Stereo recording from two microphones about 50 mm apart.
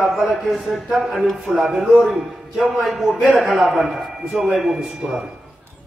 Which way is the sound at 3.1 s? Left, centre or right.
Right.